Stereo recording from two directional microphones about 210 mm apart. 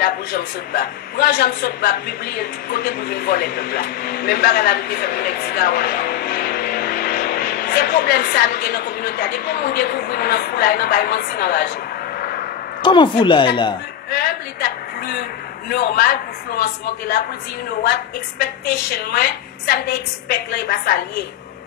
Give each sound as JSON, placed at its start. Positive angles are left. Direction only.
{"t": 0.0, "sound": "a woman's voice", "side_deg": 45}
{"t": 12.8, "sound": "speech", "side_deg": 20}
{"t": 14.1, "sound": "a woman's voice", "side_deg": 45}
{"t": 19.1, "sound": "a woman's voice", "side_deg": 45}